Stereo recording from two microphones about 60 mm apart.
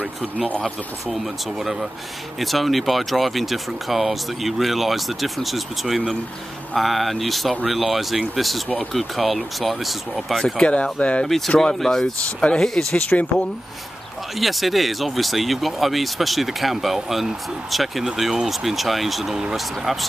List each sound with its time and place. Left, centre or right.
1.1 s speech: centre
10.4 s speech: centre
11.2 s speech: centre
14.4 s speech: centre